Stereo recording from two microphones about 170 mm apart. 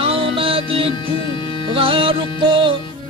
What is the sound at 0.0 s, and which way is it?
Music, 35° right (ahead or behind).